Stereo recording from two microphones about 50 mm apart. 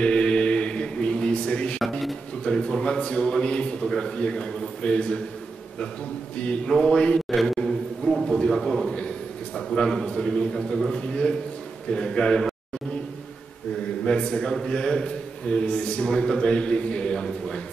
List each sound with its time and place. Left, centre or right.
0.0 s mantra: centre
2.4 s a man's voice: centre
6.4 s a man's voice: left
7.2 s a sound: centre
8.3 s a man's voice: centre
14.0 s a man's voice: centre